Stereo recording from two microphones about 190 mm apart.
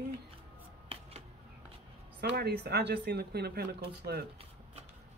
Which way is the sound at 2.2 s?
55° right (ahead or behind).